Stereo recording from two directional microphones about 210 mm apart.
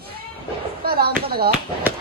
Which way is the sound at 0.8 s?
45° right (ahead or behind).